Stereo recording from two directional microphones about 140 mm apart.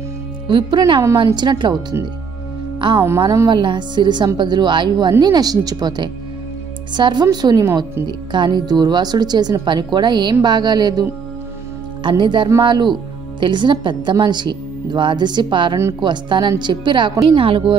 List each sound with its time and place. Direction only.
0.5 s a woman's voice: 35° right (ahead or behind)
3.2 s a woman's voice: 25° right (ahead or behind)
8.3 s a woman's voice: 35° right (ahead or behind)